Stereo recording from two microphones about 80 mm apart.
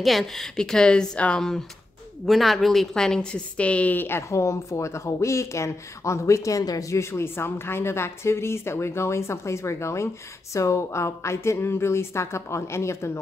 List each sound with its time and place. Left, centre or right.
0.0 s speech: centre; by 4.2 s left
4.3 s speech: left